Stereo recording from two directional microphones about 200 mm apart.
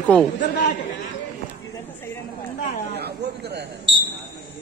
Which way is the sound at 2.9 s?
55° right (ahead or behind).